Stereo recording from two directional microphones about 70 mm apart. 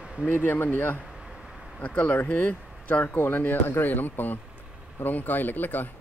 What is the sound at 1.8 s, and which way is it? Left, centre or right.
A man's voice, left.